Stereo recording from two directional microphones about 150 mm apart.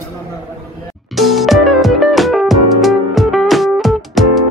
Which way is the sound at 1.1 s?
Centre (ahead or behind).